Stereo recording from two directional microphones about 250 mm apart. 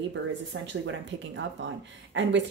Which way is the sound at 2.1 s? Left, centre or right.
Right.